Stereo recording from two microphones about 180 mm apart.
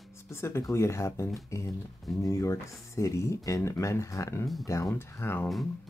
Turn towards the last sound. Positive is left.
turn(degrees=10)  # may be behind; listen again after turning